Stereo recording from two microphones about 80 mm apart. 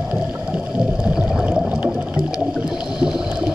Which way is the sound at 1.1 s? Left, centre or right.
Centre.